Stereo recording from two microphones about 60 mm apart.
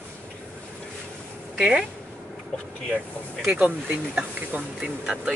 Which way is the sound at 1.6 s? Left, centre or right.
Centre.